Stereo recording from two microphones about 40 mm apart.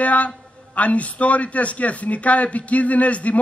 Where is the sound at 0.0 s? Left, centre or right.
Left.